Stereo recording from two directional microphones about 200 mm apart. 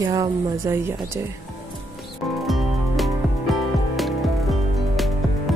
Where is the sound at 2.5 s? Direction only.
Centre (ahead or behind).